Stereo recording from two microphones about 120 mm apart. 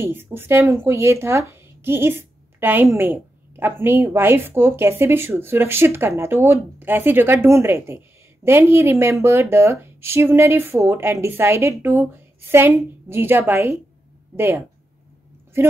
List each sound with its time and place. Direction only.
0.0 s speech: 20° right (ahead or behind)